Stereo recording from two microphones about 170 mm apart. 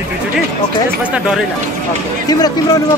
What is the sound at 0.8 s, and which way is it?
Speech, 5° right (ahead or behind).